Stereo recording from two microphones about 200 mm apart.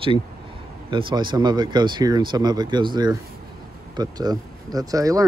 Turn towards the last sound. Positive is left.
turn(degrees=-15)  # may be behind; listen again after turning